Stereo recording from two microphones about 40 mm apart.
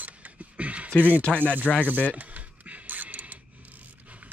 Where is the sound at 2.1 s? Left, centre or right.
Right.